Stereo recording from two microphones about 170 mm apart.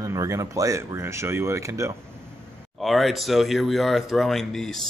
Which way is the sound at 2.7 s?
Centre (ahead or behind).